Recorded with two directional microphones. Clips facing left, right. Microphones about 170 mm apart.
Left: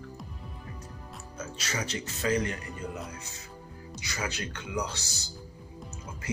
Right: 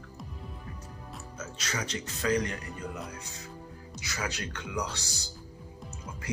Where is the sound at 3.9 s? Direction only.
Centre (ahead or behind).